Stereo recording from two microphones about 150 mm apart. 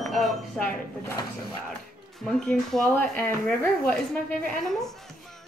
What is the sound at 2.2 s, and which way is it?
A child's voice, 5° left (ahead or behind).